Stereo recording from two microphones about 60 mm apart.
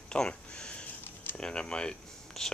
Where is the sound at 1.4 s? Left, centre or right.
Centre.